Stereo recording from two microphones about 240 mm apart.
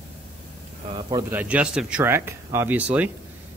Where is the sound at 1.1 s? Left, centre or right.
Centre.